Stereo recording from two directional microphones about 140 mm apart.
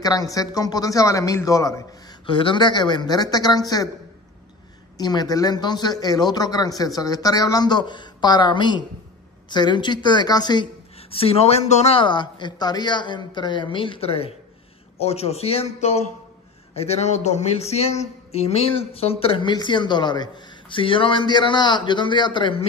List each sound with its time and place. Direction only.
0.0 s a man's voice: 25° left (ahead or behind)
2.2 s a man's voice: 35° left (ahead or behind)
4.9 s a man's voice: 30° left (ahead or behind)
11.0 s speech: 45° left (ahead or behind)